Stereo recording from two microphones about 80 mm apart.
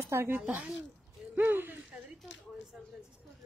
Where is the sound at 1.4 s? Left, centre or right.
Right.